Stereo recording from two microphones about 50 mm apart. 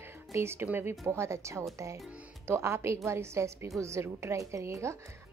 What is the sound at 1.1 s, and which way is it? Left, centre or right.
Speech, right.